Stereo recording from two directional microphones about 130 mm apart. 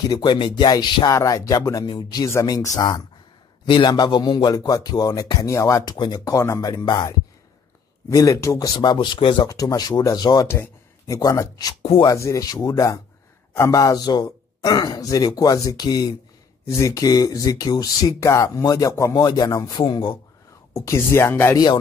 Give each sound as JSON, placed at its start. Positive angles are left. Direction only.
{"t": 0.1, "sound": "speech", "side_deg": 35}
{"t": 9.5, "sound": "speech", "side_deg": 25}
{"t": 10.5, "sound": "a sound", "side_deg": 20}
{"t": 11.1, "sound": "speech", "side_deg": 30}
{"t": 11.8, "sound": "speech", "side_deg": 50}
{"t": 12.1, "sound": "speech", "side_deg": 25}
{"t": 19.8, "sound": "speech", "side_deg": 40}
{"t": 20.7, "sound": "speech", "side_deg": 20}